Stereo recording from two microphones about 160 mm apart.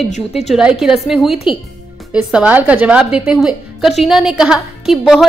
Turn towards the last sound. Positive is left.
turn(degrees=0)  # may be behind; listen again after turning